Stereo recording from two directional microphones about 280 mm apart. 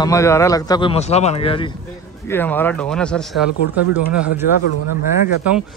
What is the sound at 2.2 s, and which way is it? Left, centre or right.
Speech, centre.